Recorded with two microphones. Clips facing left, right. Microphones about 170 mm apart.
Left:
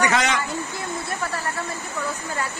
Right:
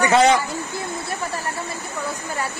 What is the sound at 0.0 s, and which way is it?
Speech, 30° right (ahead or behind).